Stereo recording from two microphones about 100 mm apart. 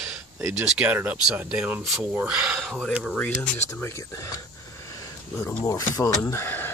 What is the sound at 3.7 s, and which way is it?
Speech, 35° left (ahead or behind).